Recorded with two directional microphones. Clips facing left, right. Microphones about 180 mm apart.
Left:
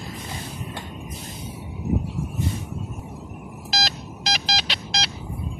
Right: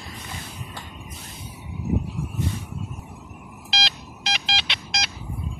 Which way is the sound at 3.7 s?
40° left (ahead or behind).